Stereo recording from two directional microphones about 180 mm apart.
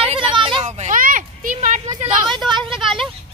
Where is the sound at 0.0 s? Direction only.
30° right (ahead or behind).